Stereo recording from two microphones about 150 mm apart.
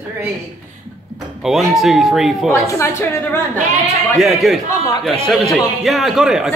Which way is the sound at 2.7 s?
15° left (ahead or behind).